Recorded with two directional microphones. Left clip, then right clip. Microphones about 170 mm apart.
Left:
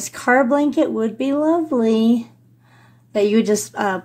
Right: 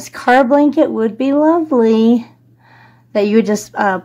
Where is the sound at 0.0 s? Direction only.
15° right (ahead or behind).